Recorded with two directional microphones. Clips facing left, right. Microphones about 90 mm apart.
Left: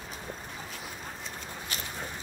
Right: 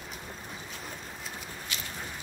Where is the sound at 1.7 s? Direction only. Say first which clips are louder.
Left 1 dB; 40° left (ahead or behind).